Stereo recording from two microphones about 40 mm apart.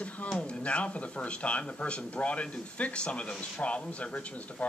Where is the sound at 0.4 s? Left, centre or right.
Left.